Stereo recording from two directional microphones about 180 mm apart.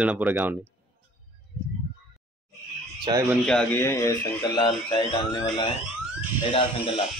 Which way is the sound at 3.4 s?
5° left (ahead or behind).